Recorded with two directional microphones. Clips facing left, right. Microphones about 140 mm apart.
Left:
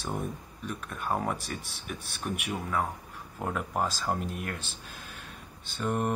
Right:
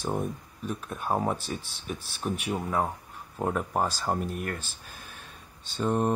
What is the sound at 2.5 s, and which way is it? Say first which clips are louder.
Speech: right 3 dB; 20° right (ahead or behind).